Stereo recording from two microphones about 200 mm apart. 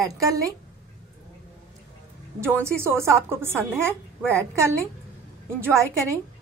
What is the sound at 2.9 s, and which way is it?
A woman's voice, 10° right (ahead or behind).